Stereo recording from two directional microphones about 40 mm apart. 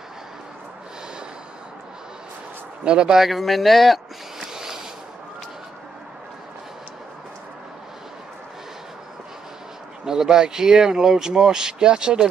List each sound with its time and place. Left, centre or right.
2.8 s speech: right
3.2 s speech: centre
4.6 s a sound: centre
10.0 s speech: centre